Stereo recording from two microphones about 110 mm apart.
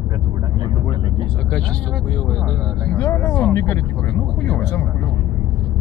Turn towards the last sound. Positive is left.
turn(degrees=20)  # may be behind; listen again after turning